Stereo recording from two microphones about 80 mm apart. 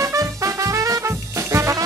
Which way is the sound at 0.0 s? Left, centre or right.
Right.